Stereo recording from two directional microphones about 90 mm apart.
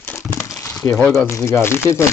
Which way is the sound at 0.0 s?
20° left (ahead or behind).